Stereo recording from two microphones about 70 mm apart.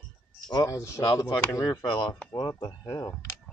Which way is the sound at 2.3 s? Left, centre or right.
Left.